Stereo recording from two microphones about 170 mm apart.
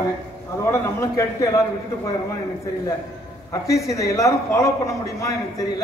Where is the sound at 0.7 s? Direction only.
15° left (ahead or behind).